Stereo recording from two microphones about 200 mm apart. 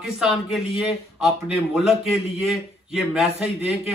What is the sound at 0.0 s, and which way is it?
A man's voice, centre (ahead or behind).